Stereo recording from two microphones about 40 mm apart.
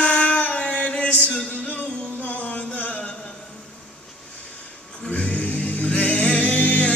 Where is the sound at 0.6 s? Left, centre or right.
Left.